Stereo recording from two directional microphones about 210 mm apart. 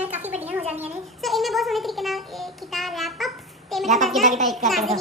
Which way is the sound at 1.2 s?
Centre (ahead or behind).